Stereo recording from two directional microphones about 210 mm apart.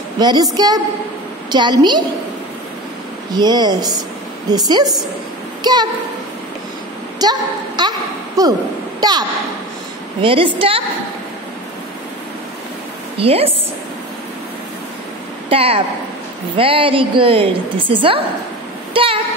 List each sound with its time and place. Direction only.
0.2 s a woman's voice: 20° right (ahead or behind)
3.3 s a woman's voice: 20° right (ahead or behind)
7.2 s a sound: 20° right (ahead or behind)
9.0 s a woman's voice: 20° right (ahead or behind)
10.2 s a woman's voice: 25° right (ahead or behind)
13.2 s a woman's voice: 30° right (ahead or behind)
15.5 s a woman's voice: 25° right (ahead or behind)